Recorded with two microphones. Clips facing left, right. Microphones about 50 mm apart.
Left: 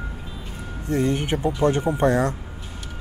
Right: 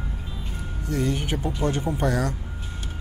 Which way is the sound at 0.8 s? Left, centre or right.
Left.